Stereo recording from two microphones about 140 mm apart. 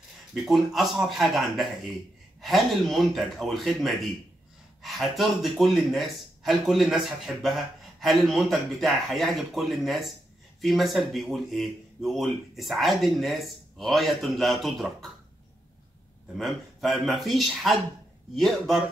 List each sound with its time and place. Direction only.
0.3 s speech: centre (ahead or behind)
16.3 s speech: centre (ahead or behind)